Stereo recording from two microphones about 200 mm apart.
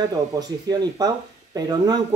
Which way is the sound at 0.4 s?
20° right (ahead or behind).